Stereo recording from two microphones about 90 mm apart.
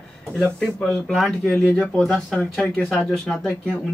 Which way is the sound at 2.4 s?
15° left (ahead or behind).